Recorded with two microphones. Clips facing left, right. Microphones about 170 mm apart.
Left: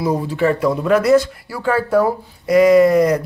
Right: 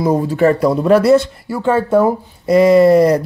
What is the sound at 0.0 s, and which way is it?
Speech, 45° right (ahead or behind).